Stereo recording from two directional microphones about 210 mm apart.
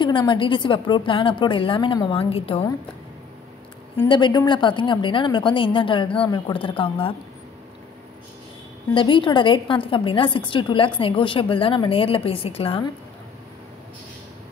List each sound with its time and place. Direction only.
0.0 s a woman's voice: 20° left (ahead or behind)
3.9 s a woman's voice: 20° left (ahead or behind)
8.9 s a woman's voice: 25° left (ahead or behind)